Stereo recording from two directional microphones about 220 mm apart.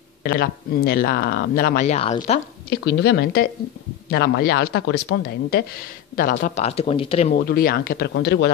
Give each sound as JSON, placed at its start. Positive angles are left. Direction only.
{"t": 0.2, "sound": "speech", "side_deg": 45}
{"t": 2.7, "sound": "speech", "side_deg": 50}
{"t": 7.3, "sound": "speech", "side_deg": 45}